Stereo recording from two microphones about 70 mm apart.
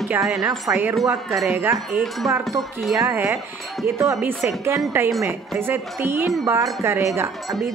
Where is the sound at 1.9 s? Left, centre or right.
Right.